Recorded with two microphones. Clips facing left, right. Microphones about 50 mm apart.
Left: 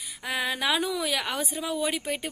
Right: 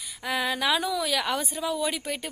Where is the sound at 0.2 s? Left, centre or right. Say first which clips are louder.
Right 1 dB; centre.